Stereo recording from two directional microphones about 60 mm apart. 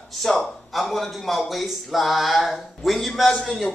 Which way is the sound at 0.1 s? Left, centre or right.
Centre.